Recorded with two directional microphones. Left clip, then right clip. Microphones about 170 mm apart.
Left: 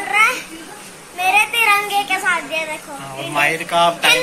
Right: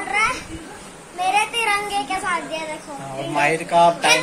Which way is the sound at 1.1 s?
15° left (ahead or behind).